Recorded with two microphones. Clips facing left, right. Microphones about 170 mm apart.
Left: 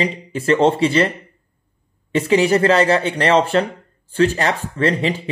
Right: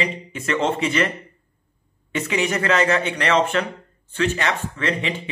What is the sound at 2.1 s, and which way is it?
Speech, 30° left (ahead or behind).